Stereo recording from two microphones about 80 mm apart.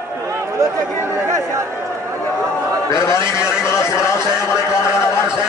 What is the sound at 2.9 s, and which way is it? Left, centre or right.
Speech, left.